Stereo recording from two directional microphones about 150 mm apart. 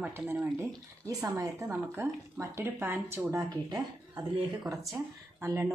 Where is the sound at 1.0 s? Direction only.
20° right (ahead or behind).